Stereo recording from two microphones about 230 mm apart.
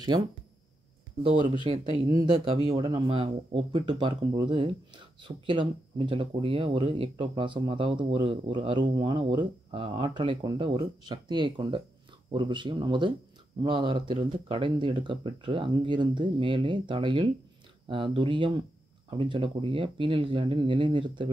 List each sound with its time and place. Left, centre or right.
1.2 s speech: right